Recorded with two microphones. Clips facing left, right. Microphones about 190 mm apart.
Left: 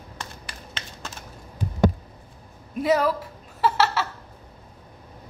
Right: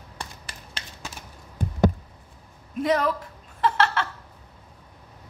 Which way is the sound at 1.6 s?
55° right (ahead or behind).